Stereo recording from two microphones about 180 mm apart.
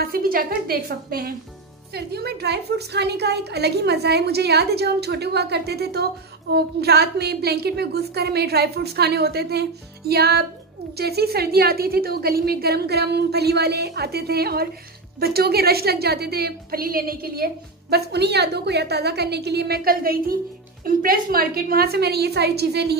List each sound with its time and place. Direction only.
0.0 s a woman's voice: 55° right (ahead or behind)